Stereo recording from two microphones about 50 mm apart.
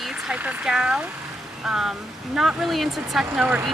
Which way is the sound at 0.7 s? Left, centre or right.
Centre.